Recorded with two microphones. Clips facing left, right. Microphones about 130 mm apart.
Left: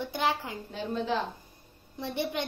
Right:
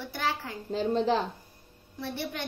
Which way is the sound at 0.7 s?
35° right (ahead or behind).